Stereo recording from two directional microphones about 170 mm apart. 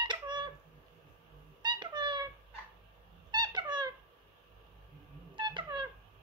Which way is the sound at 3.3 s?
25° right (ahead or behind).